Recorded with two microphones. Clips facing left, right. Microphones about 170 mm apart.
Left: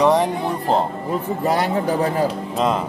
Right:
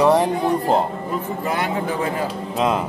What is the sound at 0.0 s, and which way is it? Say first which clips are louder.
Music: even; 5° right (ahead or behind).